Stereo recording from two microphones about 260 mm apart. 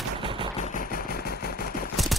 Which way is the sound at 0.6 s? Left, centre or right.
Left.